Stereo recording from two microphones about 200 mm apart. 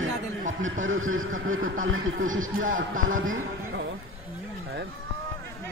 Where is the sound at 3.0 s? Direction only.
85° right.